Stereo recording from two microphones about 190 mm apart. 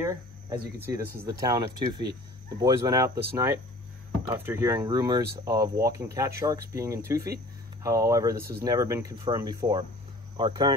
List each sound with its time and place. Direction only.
0.0 s cricket: 15° right (ahead or behind)
1.2 s speech: 20° right (ahead or behind)
8.4 s speech: 55° right (ahead or behind)
8.6 s speech: 15° right (ahead or behind)